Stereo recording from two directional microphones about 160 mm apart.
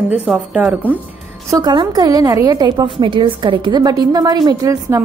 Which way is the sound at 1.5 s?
25° right (ahead or behind).